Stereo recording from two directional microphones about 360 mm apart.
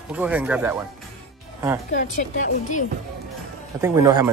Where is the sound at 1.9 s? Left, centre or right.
Left.